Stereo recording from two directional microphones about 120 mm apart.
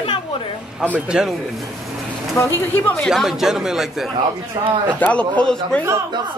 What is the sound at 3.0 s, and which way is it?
A man's voice, centre (ahead or behind).